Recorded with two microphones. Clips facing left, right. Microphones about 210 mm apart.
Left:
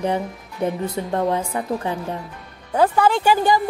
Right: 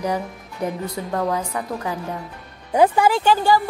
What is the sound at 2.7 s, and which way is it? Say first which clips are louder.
Speech: right 1 dB; 15° right (ahead or behind).